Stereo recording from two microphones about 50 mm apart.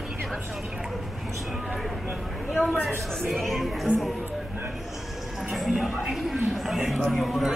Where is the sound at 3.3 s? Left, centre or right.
Centre.